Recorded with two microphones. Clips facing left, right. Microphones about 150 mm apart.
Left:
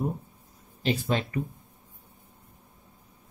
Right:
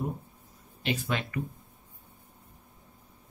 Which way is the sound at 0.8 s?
35° left (ahead or behind).